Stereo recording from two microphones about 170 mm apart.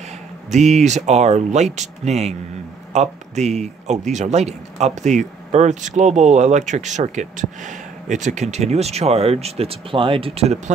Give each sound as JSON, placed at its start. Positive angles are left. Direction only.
{"t": 0.5, "sound": "a man's voice", "side_deg": -40}